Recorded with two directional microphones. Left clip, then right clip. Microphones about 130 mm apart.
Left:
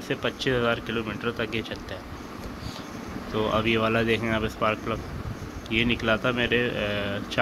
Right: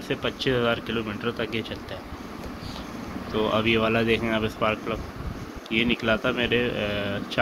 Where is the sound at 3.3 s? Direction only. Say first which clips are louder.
Right 1 dB; centre (ahead or behind).